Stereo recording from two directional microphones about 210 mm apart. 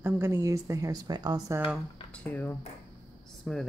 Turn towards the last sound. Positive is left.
turn(degrees=0)  # may be behind; listen again after turning